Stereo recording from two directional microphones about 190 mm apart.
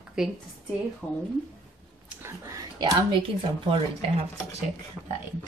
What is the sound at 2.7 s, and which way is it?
Speech, 20° right (ahead or behind).